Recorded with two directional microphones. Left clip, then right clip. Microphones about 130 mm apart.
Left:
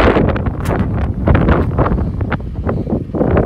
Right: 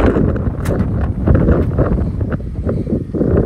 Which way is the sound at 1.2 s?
35° right (ahead or behind).